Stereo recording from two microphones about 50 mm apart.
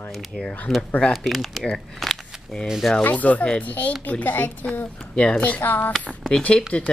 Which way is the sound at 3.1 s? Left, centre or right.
Left.